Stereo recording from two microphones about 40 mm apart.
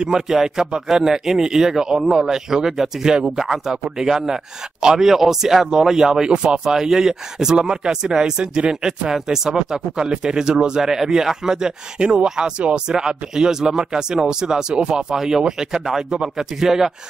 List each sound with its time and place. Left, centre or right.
0.3 s speech: centre
6.2 s speech: right
9.1 s speech: centre